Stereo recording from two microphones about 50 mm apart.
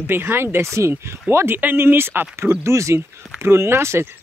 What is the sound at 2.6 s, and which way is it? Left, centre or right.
Speech, right.